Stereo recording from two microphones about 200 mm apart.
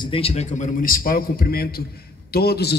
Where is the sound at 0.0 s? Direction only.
30° left (ahead or behind).